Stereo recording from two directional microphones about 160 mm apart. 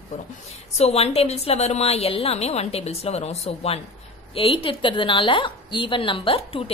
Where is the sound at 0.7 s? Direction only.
40° left (ahead or behind).